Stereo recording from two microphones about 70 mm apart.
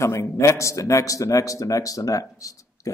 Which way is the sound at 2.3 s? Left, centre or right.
Left.